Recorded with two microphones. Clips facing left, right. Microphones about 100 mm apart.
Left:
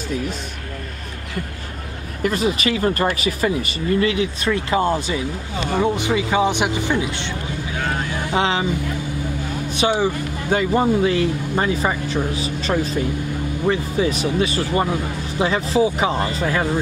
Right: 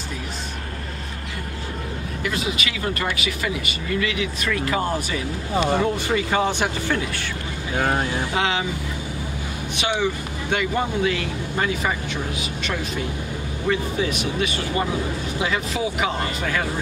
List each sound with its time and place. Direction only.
2.2 s speech: 40° left (ahead or behind); by 7.2 s 20° left (ahead or behind)
8.4 s speech: 35° left (ahead or behind)
9.8 s speech: 35° left (ahead or behind)